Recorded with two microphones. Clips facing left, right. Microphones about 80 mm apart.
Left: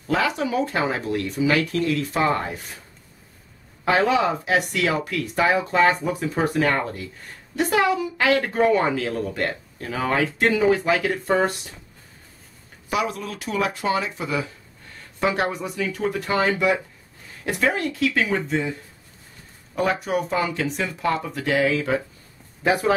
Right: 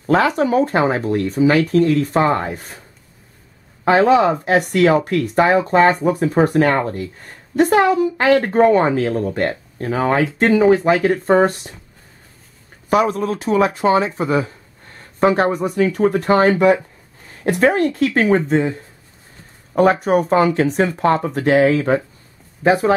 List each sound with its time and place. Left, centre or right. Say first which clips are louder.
0.0 s a woman's voice: right 7 dB; right
3.8 s a woman's voice: right 7 dB; right
12.9 s a woman's voice: right 9 dB; right